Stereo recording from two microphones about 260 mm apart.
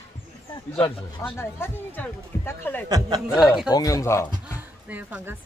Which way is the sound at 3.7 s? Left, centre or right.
Centre.